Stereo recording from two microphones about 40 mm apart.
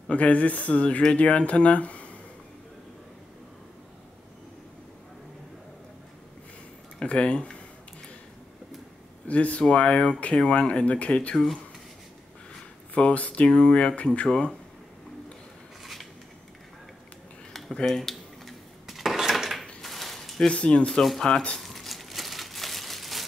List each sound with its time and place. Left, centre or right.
0.1 s speech: left
7.0 s speech: left
9.3 s speech: left
12.9 s speech: left
15.8 s a sound: centre
17.5 s a sound: centre
18.4 s dishes: centre
19.8 s a sound: centre
20.4 s speech: left
21.5 s crumpling: centre